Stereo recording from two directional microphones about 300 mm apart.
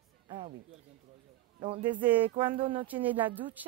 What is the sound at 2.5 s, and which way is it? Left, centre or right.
Speech, centre.